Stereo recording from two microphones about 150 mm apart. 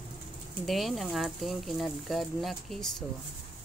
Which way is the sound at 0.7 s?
Centre (ahead or behind).